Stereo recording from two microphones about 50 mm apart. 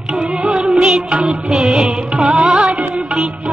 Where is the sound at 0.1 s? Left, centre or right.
Centre.